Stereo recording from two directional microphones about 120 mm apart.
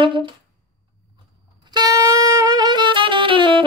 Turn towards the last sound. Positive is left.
turn(degrees=-45)  # may be behind; listen again after turning